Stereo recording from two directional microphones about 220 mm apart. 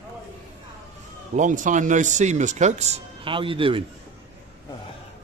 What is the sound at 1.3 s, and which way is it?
Speech, 35° right (ahead or behind).